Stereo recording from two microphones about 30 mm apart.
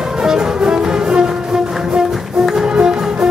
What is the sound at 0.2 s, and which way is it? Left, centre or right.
Music, right.